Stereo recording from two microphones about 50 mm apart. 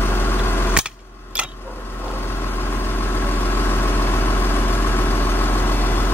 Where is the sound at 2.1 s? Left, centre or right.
Left.